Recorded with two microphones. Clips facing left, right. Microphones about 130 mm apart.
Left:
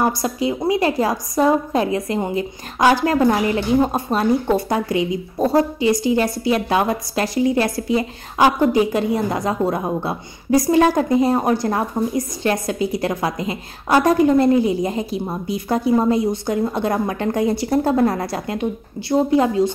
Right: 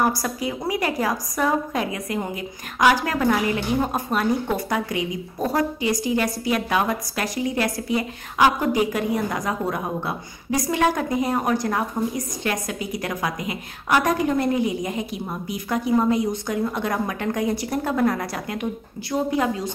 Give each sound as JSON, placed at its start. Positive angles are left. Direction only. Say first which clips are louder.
{"t": 0.0, "sound": "a woman's voice", "louder": "left 3 dB", "side_deg": 25}